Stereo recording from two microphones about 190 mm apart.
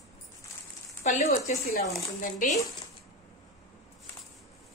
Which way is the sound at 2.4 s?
45° left (ahead or behind).